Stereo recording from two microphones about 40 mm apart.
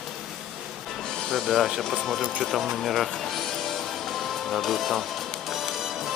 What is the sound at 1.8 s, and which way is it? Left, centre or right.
Speech, centre.